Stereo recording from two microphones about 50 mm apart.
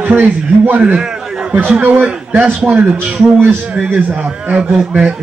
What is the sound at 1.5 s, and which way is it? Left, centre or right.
Speech, right.